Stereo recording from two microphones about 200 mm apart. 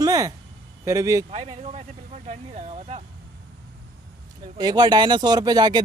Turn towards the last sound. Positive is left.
turn(degrees=-20)  # may be behind; listen again after turning